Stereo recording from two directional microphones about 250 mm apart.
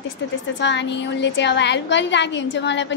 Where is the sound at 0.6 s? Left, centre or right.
Left.